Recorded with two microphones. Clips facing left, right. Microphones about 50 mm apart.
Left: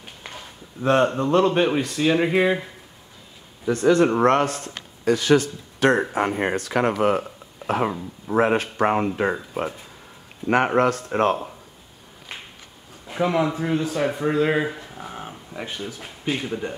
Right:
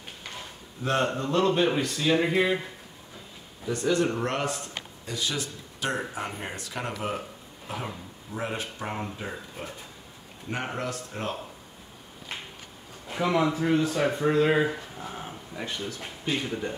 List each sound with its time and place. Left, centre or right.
0.8 s speech: left
3.8 s speech: left
10.5 s speech: left
13.2 s speech: centre
15.0 s a sound: centre
16.3 s speech: centre